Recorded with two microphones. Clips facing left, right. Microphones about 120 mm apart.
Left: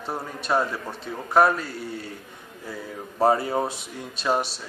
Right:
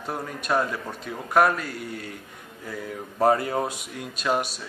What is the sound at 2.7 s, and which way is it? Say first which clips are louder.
Speech: right 1 dB; 10° left (ahead or behind).